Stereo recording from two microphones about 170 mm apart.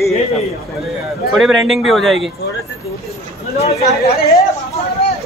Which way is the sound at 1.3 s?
Centre (ahead or behind).